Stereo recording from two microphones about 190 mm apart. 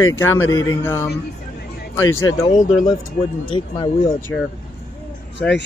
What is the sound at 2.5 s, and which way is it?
Speech, 40° left (ahead or behind).